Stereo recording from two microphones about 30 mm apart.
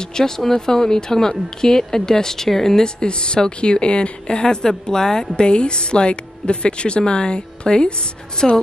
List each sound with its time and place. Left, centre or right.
0.0 s speech: left
5.3 s a woman's voice: left
8.4 s a woman's voice: centre